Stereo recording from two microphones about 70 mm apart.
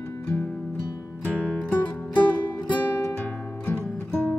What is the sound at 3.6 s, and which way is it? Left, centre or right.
Music, left.